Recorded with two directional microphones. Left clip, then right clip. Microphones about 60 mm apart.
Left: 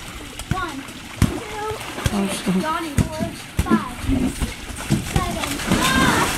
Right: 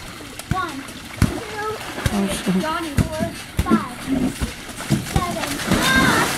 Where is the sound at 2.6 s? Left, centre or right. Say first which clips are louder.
Left 1 dB; centre.